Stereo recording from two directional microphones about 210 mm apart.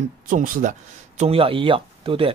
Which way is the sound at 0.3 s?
40° right (ahead or behind).